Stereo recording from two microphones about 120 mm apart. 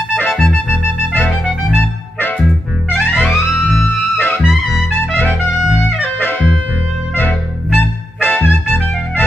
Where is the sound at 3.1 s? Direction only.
15° left (ahead or behind).